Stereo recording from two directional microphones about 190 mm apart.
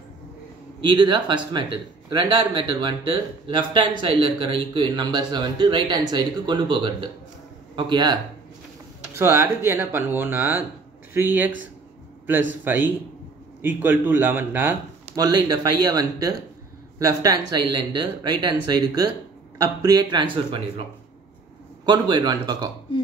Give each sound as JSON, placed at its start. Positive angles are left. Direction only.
{"t": 0.7, "sound": "speech", "side_deg": -25}
{"t": 12.7, "sound": "speech", "side_deg": -10}
{"t": 15.1, "sound": "speech", "side_deg": -20}
{"t": 21.8, "sound": "speech", "side_deg": -20}